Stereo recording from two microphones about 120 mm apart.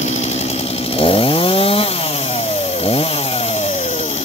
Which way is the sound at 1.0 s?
50° left (ahead or behind).